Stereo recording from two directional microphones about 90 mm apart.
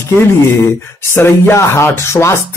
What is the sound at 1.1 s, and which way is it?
Speech, 25° left (ahead or behind).